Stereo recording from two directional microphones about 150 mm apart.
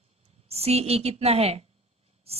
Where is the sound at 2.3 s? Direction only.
40° right (ahead or behind).